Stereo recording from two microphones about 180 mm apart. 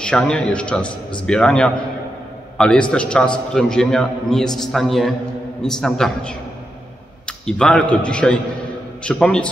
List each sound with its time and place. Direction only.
0.0 s a man's voice: 5° left (ahead or behind)